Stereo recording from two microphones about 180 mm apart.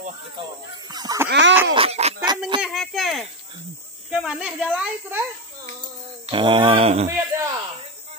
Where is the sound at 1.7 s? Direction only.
35° right (ahead or behind).